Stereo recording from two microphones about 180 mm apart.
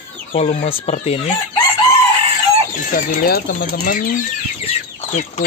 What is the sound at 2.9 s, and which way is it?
Speech, 55° left (ahead or behind).